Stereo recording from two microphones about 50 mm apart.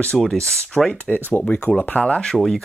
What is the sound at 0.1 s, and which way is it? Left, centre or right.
Speech, centre.